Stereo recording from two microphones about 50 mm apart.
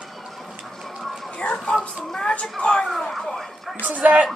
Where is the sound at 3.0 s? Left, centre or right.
Centre.